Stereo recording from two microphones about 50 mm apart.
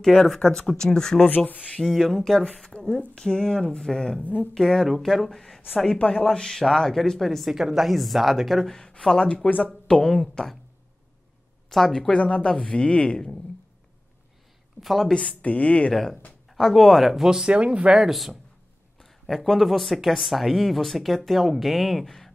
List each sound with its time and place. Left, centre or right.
0.0 s speech: centre
1.5 s speech: left
1.8 s speech: centre
4.2 s speech: left
4.6 s speech: centre
5.9 s speech: centre
7.5 s speech: centre
8.6 s speech: centre
11.7 s speech: centre; by 13.2 s left
14.8 s a woman's voice: centre
15.1 s speech: left
15.9 s speech: centre
17.5 s speech: right
17.9 s speech: centre